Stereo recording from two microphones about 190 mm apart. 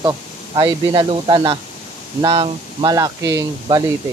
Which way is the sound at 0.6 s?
25° right (ahead or behind).